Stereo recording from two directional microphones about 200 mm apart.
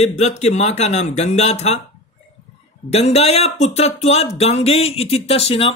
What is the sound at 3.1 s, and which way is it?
Speech, 30° left (ahead or behind).